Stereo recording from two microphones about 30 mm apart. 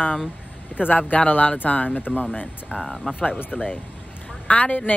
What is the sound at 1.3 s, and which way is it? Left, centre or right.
Speech, left.